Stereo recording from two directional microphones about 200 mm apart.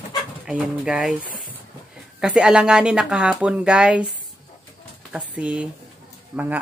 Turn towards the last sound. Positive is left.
turn(degrees=-5)  # may be behind; listen again after turning